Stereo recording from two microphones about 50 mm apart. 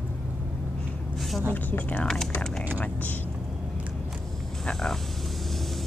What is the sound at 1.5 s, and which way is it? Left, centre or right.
Speech, left.